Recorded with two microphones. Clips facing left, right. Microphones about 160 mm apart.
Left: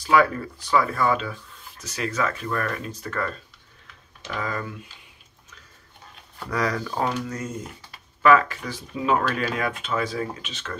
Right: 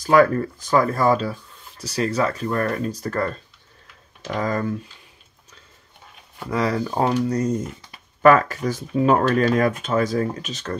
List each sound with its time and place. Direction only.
0.0 s speech: 45° right (ahead or behind)
6.5 s speech: 25° right (ahead or behind)